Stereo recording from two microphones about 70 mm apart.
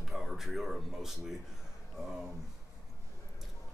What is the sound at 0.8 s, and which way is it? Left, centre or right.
Speech, centre.